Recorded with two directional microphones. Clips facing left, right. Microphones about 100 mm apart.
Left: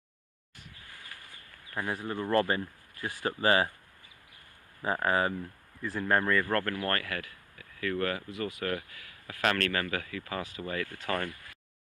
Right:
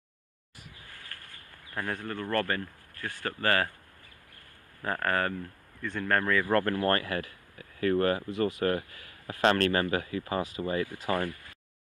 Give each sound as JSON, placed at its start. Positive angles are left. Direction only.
{"t": 1.1, "sound": "a sound", "side_deg": 10}
{"t": 1.8, "sound": "speech", "side_deg": 10}
{"t": 4.8, "sound": "speech", "side_deg": 10}
{"t": 6.4, "sound": "speech", "side_deg": -20}
{"t": 10.9, "sound": "speech", "side_deg": -10}